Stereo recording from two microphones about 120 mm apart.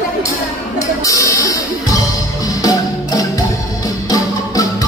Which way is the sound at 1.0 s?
30° left (ahead or behind).